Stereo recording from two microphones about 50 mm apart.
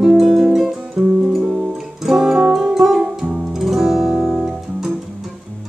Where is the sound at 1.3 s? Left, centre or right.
Centre.